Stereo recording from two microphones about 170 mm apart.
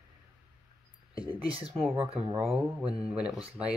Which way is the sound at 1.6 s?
5° right (ahead or behind).